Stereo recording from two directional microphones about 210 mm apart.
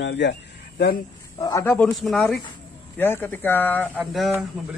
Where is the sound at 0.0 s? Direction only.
55° left (ahead or behind).